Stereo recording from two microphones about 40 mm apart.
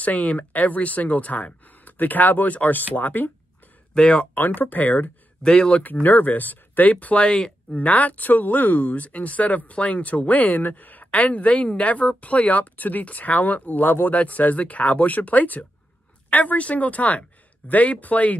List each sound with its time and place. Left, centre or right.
0.0 s speech: left
3.9 s speech: left
4.4 s speech: left
5.4 s speech: centre
6.0 s speech: left
7.2 s speech: centre
7.7 s speech: left
11.1 s speech: left